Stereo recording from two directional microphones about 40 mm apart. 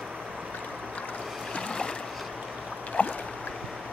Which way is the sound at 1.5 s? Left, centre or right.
Left.